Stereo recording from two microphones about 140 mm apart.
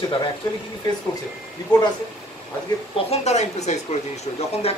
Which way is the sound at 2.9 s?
50° left (ahead or behind).